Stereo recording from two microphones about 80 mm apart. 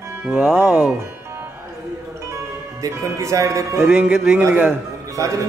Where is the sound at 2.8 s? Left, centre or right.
Right.